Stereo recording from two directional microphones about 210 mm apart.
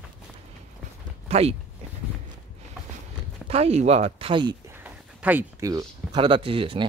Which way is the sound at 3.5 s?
30° right (ahead or behind).